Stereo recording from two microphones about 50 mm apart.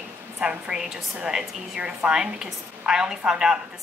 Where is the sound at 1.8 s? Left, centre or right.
Right.